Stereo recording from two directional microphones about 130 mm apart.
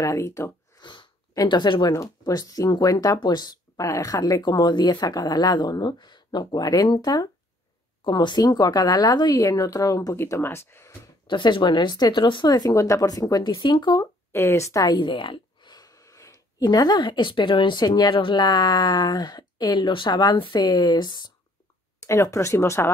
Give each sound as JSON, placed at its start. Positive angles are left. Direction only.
{"t": 0.0, "sound": "speech", "side_deg": 25}
{"t": 11.2, "sound": "speech", "side_deg": 40}
{"t": 14.3, "sound": "speech", "side_deg": 20}
{"t": 22.0, "sound": "speech", "side_deg": 25}